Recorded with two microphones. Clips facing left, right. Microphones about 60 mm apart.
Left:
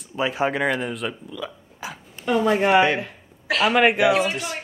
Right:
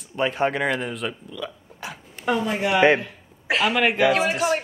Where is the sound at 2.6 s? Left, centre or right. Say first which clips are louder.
Even; left.